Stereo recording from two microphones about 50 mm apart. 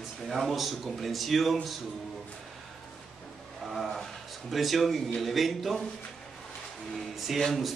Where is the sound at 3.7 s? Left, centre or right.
Centre.